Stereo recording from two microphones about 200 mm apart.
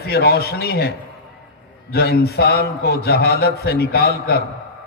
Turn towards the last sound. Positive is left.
turn(degrees=50)  # may be behind; listen again after turning